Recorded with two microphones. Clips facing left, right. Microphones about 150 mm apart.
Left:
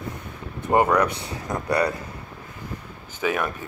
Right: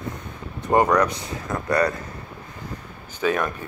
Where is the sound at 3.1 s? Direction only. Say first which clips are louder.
Right 2 dB; 15° left (ahead or behind).